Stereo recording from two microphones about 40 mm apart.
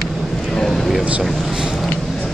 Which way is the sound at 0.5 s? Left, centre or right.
Centre.